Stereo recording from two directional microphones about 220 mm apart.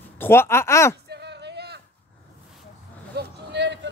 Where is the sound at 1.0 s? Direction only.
50° right (ahead or behind).